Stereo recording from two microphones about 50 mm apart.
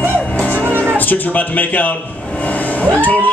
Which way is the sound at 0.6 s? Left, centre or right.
Right.